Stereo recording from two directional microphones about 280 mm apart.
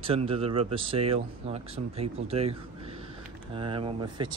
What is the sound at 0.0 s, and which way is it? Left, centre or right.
Speech, centre.